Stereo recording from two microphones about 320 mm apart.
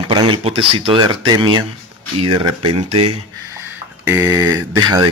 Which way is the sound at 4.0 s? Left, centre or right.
Centre.